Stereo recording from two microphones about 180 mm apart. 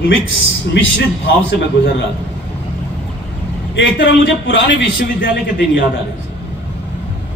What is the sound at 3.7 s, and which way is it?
Speech, 90° left.